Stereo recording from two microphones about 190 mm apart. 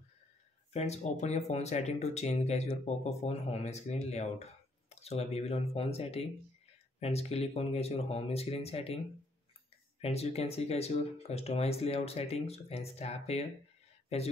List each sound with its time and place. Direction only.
0.7 s speech: 35° left (ahead or behind)